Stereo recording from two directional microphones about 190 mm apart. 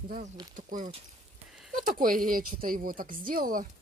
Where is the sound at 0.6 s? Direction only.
40° right (ahead or behind).